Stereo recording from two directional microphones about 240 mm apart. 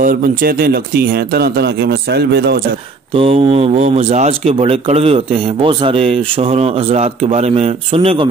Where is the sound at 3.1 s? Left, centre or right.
Right.